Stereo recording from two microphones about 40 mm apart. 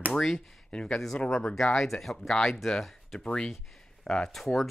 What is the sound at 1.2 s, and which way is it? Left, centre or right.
Speech, left.